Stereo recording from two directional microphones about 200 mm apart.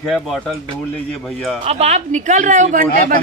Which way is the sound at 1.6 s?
35° right (ahead or behind).